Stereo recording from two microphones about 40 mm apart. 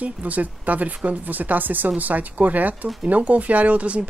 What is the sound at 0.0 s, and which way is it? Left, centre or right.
Speech, right.